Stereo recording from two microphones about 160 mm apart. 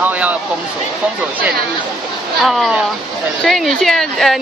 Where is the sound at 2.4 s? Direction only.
Centre (ahead or behind).